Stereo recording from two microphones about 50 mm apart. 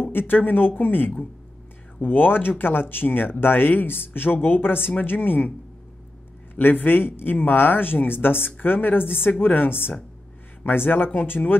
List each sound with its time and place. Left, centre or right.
0.0 s speech: left
6.5 s speech: left
10.9 s speech: left